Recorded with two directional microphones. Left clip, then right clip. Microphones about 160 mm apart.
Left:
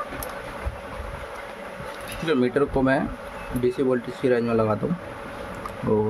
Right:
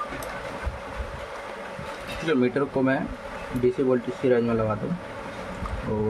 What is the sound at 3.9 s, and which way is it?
Speech, 40° left (ahead or behind).